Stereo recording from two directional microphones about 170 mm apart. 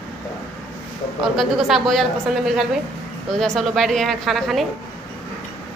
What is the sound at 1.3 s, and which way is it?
A woman's voice, centre (ahead or behind).